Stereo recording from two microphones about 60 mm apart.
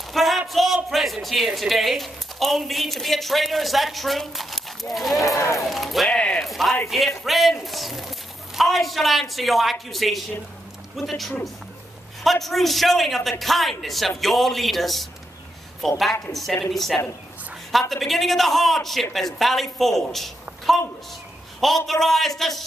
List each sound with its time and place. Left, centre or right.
0.1 s music: centre
0.8 s speech: centre
5.2 s speech: left
5.7 s speech: centre
6.0 s a sound: centre
6.4 s a sound: centre
6.9 s speech: centre
16.3 s a man's voice: centre